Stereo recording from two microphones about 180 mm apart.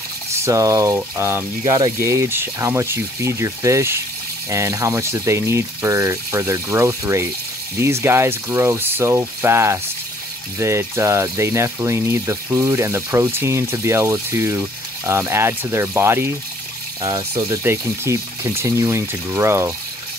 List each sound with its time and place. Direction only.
0.3 s speech: 15° right (ahead or behind)
17.0 s speech: 25° right (ahead or behind)
17.5 s speech: 15° right (ahead or behind)